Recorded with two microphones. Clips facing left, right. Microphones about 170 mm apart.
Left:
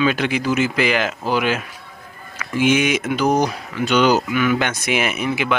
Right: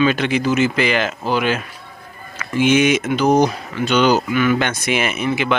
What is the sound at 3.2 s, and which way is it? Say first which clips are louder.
Speech: right 3 dB; 25° right (ahead or behind).